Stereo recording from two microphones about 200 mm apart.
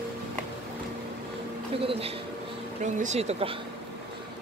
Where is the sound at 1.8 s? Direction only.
30° right (ahead or behind).